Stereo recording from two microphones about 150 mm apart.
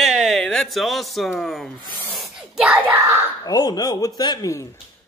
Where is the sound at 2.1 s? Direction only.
Centre (ahead or behind).